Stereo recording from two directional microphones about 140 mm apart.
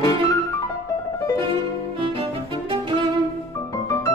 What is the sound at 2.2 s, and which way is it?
Music, 40° right (ahead or behind).